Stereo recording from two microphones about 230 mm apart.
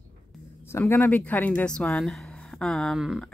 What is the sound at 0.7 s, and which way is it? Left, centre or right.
Speech, centre.